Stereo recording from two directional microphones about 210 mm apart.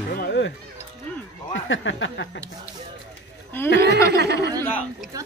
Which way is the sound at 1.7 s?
65° left (ahead or behind).